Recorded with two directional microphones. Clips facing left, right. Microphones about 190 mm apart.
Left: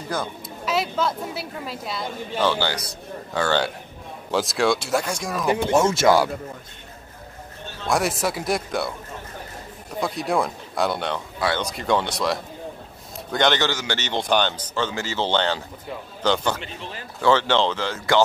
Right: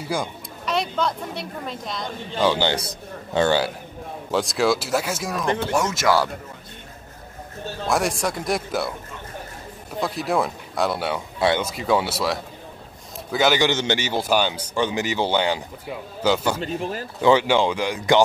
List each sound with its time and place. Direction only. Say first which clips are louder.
0.0 s speech: right 2 dB; 10° right (ahead or behind)
0.7 s speech: even; 5° left (ahead or behind)
2.4 s a man's voice: right 3 dB; 15° right (ahead or behind)
4.3 s speech: even; centre (ahead or behind)
5.6 s speech: left 4 dB; 25° left (ahead or behind)
7.8 s speech: even; centre (ahead or behind)
9.9 s speech: even; centre (ahead or behind)
11.3 s speech: right 5 dB; 25° right (ahead or behind)
11.6 s speech: right 1 dB; 5° right (ahead or behind)
13.7 s a man's voice: right 5 dB; 20° right (ahead or behind)
14.0 s speech: left 3 dB; 5° right (ahead or behind)
16.5 s speech: right 9 dB; 45° right (ahead or behind)
17.2 s speech: right 2 dB; 15° right (ahead or behind)